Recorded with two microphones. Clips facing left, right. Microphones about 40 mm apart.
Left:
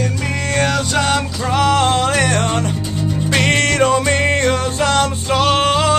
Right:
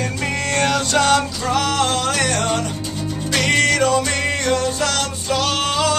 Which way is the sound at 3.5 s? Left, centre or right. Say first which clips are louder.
Even; left.